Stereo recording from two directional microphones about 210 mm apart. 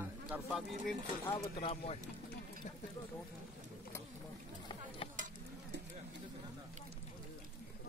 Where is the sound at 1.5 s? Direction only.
30° left (ahead or behind).